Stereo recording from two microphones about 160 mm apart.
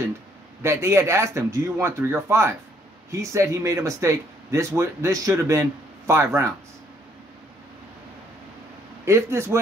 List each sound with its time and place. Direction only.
0.6 s speech: 15° right (ahead or behind)
9.0 s speech: 15° right (ahead or behind)